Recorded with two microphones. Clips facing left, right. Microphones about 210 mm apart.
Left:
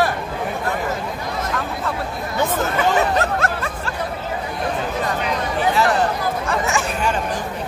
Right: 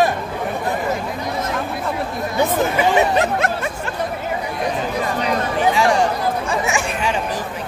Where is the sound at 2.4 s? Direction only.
15° right (ahead or behind).